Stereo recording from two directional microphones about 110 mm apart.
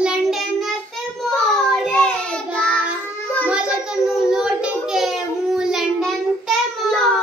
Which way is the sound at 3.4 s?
10° right (ahead or behind).